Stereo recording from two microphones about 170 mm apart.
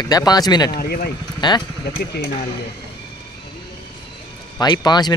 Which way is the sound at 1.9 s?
60° left (ahead or behind).